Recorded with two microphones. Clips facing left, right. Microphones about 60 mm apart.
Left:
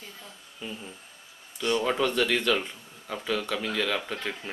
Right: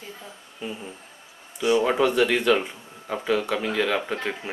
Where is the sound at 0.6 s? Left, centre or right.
Centre.